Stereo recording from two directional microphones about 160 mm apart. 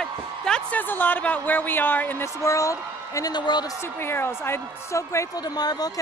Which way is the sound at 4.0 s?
15° left (ahead or behind).